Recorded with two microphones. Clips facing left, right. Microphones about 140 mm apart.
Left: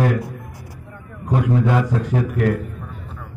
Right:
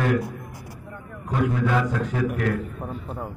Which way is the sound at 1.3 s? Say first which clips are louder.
Left 4 dB; 35° left (ahead or behind).